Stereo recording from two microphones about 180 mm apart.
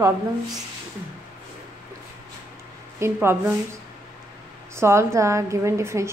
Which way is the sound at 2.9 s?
15° right (ahead or behind).